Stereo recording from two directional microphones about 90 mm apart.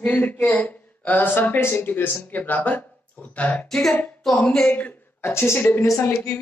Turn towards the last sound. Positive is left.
turn(degrees=35)  # may be behind; listen again after turning